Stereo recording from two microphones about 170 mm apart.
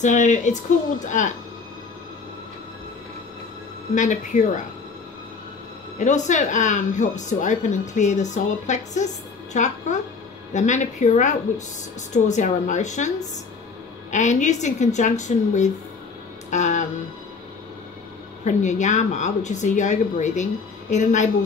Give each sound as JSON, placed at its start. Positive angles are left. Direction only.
{"t": 0.0, "sound": "speech", "side_deg": 45}
{"t": 3.9, "sound": "speech", "side_deg": 45}
{"t": 5.9, "sound": "speech", "side_deg": 45}
{"t": 14.1, "sound": "speech", "side_deg": 45}
{"t": 16.4, "sound": "music", "side_deg": 45}
{"t": 18.4, "sound": "speech", "side_deg": 45}